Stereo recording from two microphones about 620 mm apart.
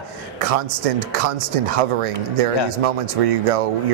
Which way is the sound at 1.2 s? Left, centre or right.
Right.